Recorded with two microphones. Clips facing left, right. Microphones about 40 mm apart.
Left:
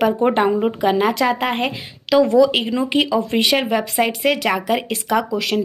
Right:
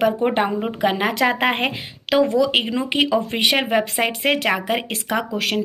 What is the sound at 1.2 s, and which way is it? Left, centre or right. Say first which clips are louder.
Speech: right 2 dB; centre.